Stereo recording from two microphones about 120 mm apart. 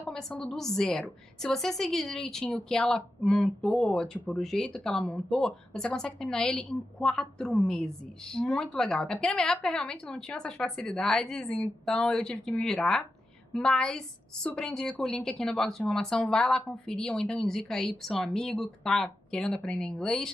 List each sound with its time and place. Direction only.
0.1 s a woman's voice: 5° left (ahead or behind)